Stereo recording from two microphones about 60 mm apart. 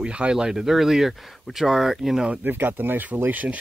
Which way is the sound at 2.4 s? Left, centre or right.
Right.